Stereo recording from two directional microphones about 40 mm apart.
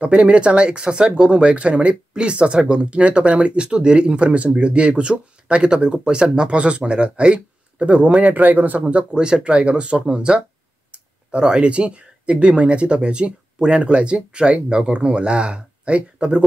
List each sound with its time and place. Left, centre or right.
0.0 s speech: right
8.8 s speech: right